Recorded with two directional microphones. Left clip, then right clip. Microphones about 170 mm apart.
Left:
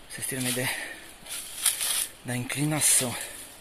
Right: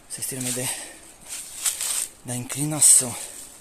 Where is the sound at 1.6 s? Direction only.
25° right (ahead or behind).